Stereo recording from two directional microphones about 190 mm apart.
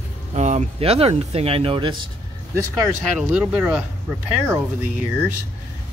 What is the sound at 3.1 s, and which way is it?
Speech, 5° right (ahead or behind).